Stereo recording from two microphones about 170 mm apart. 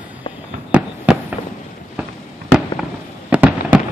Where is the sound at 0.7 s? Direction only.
5° right (ahead or behind).